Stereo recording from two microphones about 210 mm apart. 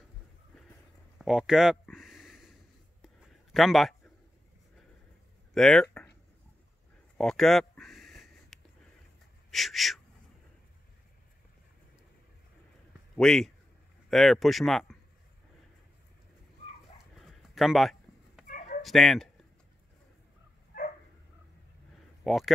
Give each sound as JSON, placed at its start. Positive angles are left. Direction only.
{"t": 1.1, "sound": "a sound", "side_deg": 0}
{"t": 3.5, "sound": "a man's voice", "side_deg": 0}
{"t": 5.5, "sound": "speech", "side_deg": 0}
{"t": 7.2, "sound": "a sound", "side_deg": 0}
{"t": 9.5, "sound": "speech", "side_deg": 0}
{"t": 13.1, "sound": "a man's voice", "side_deg": 0}
{"t": 17.2, "sound": "a sound", "side_deg": 0}
{"t": 18.5, "sound": "chicken", "side_deg": 35}
{"t": 18.8, "sound": "speech", "side_deg": 0}
{"t": 22.2, "sound": "speech", "side_deg": 0}